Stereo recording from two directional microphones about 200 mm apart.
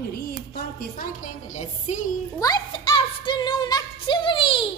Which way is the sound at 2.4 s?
20° left (ahead or behind).